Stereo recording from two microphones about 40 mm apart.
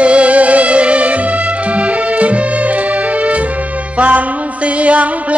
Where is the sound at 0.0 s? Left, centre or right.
Right.